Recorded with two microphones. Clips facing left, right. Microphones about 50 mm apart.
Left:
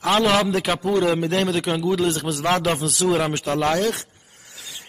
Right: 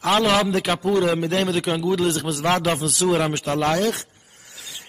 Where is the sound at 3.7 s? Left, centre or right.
Left.